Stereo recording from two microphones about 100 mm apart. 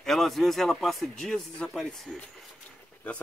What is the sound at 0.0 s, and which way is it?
Speech, centre (ahead or behind).